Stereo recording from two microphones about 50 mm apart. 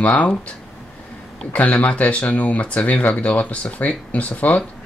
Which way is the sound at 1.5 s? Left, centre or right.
Left.